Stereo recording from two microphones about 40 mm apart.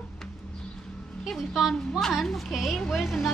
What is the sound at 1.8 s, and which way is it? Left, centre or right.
A woman's voice, centre.